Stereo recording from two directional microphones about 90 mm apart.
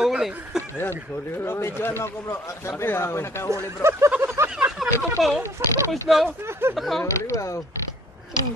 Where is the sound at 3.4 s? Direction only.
30° right (ahead or behind).